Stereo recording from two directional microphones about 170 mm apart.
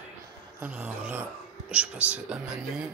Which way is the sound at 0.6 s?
10° right (ahead or behind).